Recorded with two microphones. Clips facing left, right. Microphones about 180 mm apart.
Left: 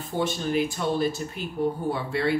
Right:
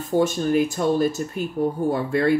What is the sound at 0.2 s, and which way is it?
Speech, 45° right (ahead or behind).